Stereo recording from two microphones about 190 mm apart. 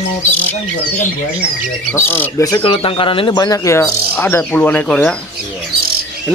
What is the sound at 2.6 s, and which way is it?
Speech, 30° left (ahead or behind).